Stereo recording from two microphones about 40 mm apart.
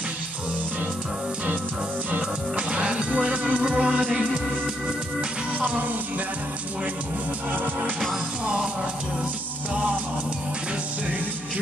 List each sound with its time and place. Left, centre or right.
2.0 s music: right
2.7 s music: right